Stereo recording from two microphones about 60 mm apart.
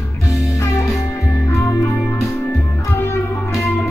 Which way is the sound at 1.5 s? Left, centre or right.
Left.